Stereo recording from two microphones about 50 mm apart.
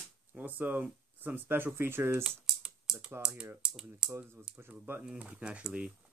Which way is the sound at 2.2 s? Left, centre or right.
Centre.